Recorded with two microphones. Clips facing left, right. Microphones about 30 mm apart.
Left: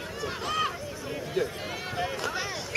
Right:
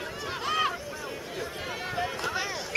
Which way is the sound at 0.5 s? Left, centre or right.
Centre.